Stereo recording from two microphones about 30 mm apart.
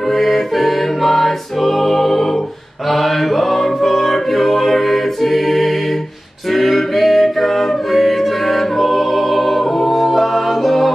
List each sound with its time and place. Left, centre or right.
0.1 s music: centre